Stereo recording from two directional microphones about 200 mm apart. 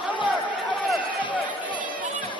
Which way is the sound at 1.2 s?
25° left (ahead or behind).